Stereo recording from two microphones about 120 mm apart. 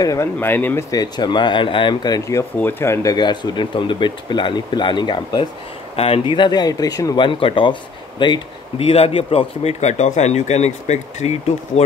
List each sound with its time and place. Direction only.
0.0 s speech: 30° left (ahead or behind)
0.4 s speech: 15° left (ahead or behind)
0.9 s speech: 35° left (ahead or behind)
5.9 s speech: 50° left (ahead or behind); by 7.2 s 30° left (ahead or behind)
7.2 s speech: 45° left (ahead or behind); by 11.8 s 70° left (ahead or behind)